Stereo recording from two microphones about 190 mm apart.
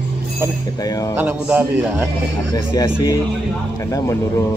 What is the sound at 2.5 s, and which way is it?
Speech, 20° left (ahead or behind).